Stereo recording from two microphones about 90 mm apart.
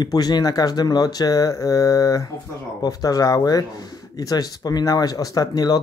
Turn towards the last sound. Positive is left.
turn(degrees=45)  # may be behind; listen again after turning